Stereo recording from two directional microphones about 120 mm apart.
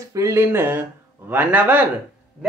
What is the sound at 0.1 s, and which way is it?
Speech, 25° right (ahead or behind).